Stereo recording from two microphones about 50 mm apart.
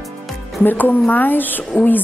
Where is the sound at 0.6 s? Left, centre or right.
Left.